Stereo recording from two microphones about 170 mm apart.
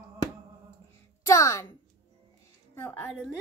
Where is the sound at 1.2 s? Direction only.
20° left (ahead or behind).